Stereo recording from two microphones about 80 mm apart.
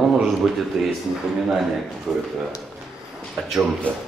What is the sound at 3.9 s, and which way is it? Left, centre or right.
Speech, centre.